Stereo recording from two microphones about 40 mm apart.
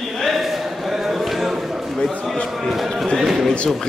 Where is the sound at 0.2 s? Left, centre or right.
Centre.